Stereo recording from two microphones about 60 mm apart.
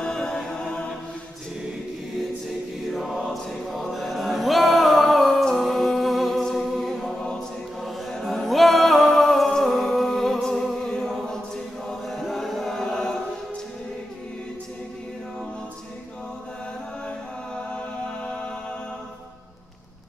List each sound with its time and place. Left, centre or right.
0.0 s chant: centre
2.9 s choir: centre
7.8 s music: centre
11.9 s chant: centre
17.7 s music: centre